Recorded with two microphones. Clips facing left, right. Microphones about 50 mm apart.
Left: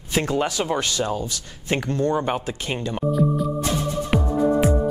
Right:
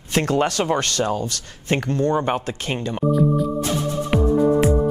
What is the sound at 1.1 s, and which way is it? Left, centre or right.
Speech, right.